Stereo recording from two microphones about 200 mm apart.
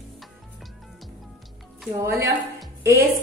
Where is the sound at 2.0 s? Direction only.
15° right (ahead or behind).